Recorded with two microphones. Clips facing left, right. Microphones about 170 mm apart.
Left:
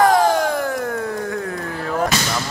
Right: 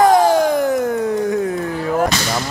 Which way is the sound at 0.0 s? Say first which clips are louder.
Right 3 dB; 20° right (ahead or behind).